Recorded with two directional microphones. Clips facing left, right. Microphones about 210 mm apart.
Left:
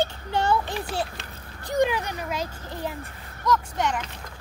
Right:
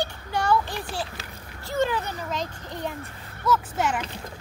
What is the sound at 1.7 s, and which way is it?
Speech, 15° left (ahead or behind).